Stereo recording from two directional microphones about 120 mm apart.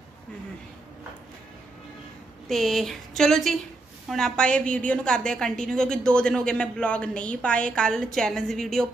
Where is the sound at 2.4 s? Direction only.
Centre (ahead or behind).